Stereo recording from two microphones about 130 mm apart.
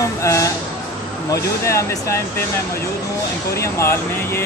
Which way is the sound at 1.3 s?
20° left (ahead or behind).